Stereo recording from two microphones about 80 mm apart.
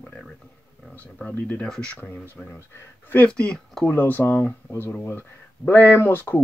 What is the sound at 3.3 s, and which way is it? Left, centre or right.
Speech, centre.